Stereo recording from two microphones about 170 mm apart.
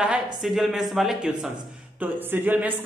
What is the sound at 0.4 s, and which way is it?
Speech, centre (ahead or behind).